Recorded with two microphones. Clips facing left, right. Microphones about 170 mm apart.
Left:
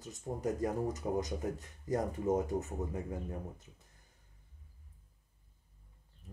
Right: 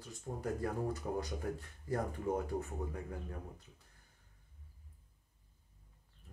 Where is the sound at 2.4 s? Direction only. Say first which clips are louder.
Left 3 dB; 20° left (ahead or behind).